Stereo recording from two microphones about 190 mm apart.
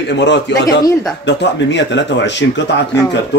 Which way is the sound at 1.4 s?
70° left (ahead or behind).